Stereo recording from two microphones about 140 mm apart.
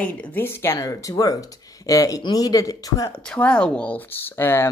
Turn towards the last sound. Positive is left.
turn(degrees=15)  # may be behind; listen again after turning